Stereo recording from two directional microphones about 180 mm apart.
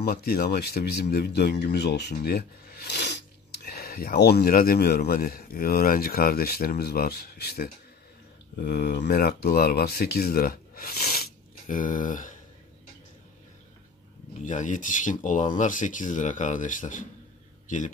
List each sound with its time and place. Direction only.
0.0 s speech: 60° left (ahead or behind)
14.4 s a man's voice: 45° left (ahead or behind)